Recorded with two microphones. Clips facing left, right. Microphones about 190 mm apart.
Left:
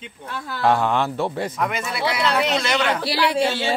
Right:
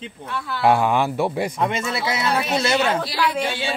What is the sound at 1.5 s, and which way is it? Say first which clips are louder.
Speech: right 2 dB; 25° right (ahead or behind).